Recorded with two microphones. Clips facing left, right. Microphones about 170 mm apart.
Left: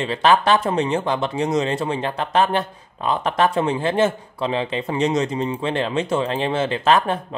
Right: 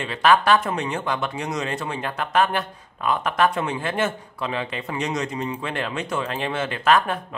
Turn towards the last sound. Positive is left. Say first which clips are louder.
# left 2 dB
turn(degrees=30)  # may be behind; listen again after turning